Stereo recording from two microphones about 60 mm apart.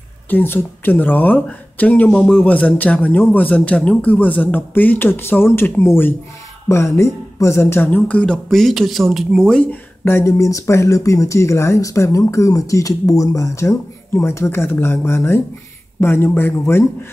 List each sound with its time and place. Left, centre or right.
0.3 s speech: left
6.7 s speech: left
8.1 s speech: centre
8.5 s speech: centre
9.4 s speech: centre
9.7 s speech: left